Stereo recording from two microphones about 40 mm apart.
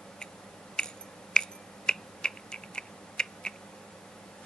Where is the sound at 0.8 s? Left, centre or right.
Centre.